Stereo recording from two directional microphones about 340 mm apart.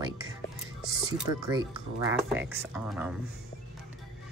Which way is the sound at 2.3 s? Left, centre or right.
Centre.